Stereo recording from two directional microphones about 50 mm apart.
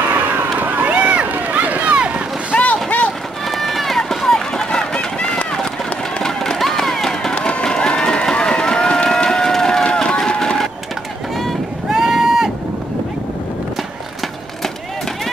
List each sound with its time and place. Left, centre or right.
0.0 s vehicle: right
0.9 s run: right
2.5 s vehicle: left
3.4 s run: centre
11.9 s run: centre